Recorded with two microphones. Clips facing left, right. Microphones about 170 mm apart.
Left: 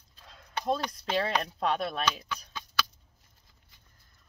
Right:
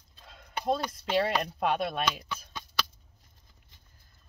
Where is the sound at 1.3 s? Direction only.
10° right (ahead or behind).